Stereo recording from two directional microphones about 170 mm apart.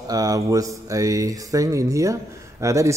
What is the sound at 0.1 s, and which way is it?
Speech, 20° right (ahead or behind).